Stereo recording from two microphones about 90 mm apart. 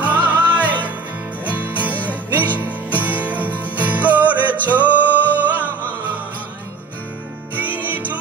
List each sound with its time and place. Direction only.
0.0 s music: 20° right (ahead or behind)
5.7 s music: 20° left (ahead or behind)
7.5 s music: 20° right (ahead or behind)